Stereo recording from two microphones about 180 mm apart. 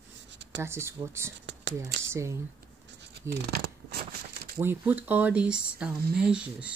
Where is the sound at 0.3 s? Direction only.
80° right.